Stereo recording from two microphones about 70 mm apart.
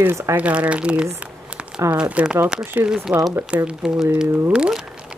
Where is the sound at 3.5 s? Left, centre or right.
Centre.